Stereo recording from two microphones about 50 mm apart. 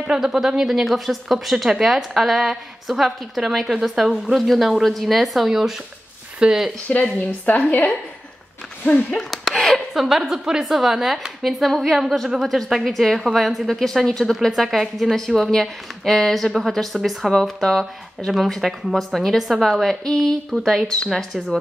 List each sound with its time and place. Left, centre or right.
0.0 s a woman's voice: centre
6.9 s a woman's voice: left
9.3 s a sound: centre
9.9 s a woman's voice: centre